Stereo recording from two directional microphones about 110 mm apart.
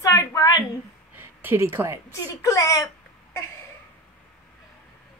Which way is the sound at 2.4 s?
30° left (ahead or behind).